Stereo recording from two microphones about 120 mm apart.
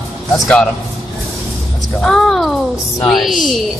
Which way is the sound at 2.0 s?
Centre (ahead or behind).